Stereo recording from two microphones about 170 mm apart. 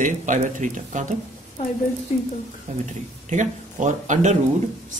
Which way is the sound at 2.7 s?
45° right (ahead or behind).